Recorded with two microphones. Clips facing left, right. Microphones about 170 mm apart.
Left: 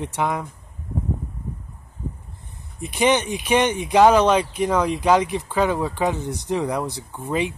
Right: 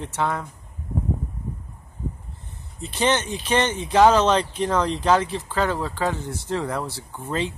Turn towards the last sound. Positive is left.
turn(degrees=15)  # may be behind; listen again after turning